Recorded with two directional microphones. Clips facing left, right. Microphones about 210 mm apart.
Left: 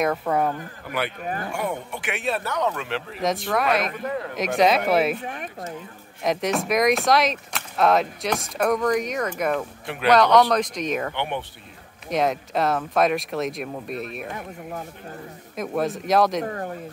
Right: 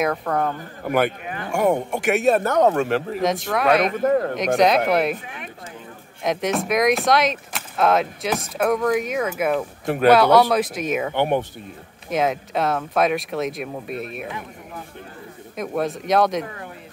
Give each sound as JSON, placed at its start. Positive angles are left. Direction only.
{"t": 0.0, "sound": "speech", "side_deg": 5}
{"t": 0.8, "sound": "speech", "side_deg": -45}
{"t": 3.2, "sound": "speech", "side_deg": 0}
{"t": 3.9, "sound": "speech", "side_deg": -45}
{"t": 4.6, "sound": "speech", "side_deg": 0}
{"t": 5.2, "sound": "speech", "side_deg": 45}
{"t": 6.2, "sound": "speech", "side_deg": 0}
{"t": 9.8, "sound": "speech", "side_deg": -45}
{"t": 10.1, "sound": "speech", "side_deg": -5}
{"t": 11.1, "sound": "speech", "side_deg": -45}
{"t": 12.1, "sound": "speech", "side_deg": 0}
{"t": 15.5, "sound": "speech", "side_deg": 0}
{"t": 16.4, "sound": "speech", "side_deg": 45}